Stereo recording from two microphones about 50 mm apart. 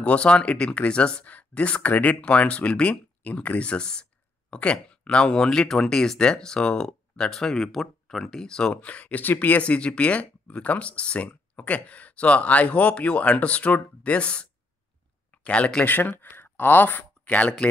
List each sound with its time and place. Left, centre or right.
0.0 s speech: left
8.8 s speech: left
9.6 s speech: left
15.8 s speech: left